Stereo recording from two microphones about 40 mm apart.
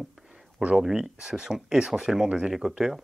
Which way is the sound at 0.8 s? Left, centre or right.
Centre.